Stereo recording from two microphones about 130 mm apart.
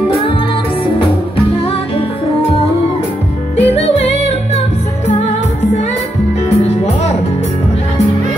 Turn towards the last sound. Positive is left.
turn(degrees=55)  # may be behind; listen again after turning